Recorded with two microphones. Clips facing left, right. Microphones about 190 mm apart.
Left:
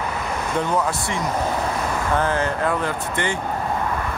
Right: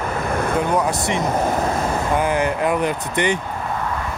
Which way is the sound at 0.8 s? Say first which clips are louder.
Right 3 dB; 20° right (ahead or behind).